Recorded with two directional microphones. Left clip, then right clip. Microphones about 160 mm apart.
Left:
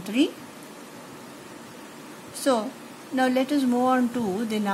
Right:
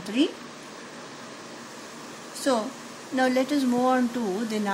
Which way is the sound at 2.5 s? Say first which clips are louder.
Left 2 dB; 20° left (ahead or behind).